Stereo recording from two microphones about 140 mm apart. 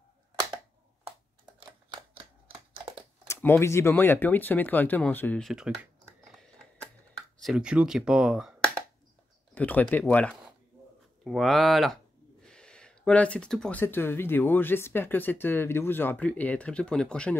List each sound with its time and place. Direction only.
2.1 s typewriter: 40° right (ahead or behind)
3.3 s speech: 20° left (ahead or behind)
5.4 s speech: 5° right (ahead or behind)
7.4 s speech: 5° right (ahead or behind)
9.5 s speech: 10° left (ahead or behind)